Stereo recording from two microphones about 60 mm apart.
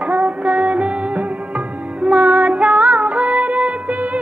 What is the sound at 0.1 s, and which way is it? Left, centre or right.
Music, right.